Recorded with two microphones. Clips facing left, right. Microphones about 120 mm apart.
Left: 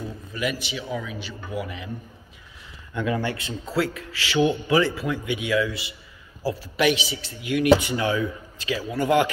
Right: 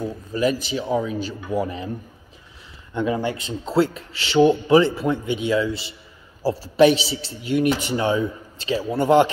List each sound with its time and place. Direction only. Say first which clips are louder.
0.0 s speech: right 7 dB; 40° right (ahead or behind)
2.9 s speech: right 3 dB; 20° right (ahead or behind)